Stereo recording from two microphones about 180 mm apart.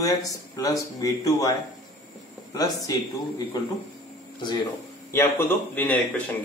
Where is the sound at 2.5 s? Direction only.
20° left (ahead or behind).